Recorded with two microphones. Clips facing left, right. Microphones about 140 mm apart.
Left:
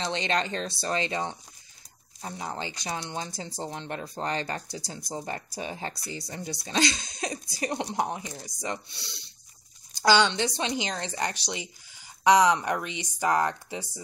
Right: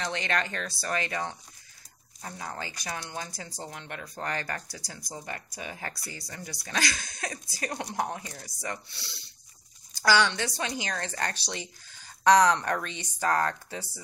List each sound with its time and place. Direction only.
0.0 s speech: 20° left (ahead or behind)